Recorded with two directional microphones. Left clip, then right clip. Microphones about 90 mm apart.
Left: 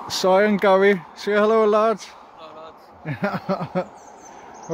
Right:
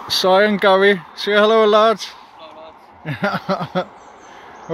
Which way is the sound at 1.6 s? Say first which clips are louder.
Right 5 dB; 40° right (ahead or behind).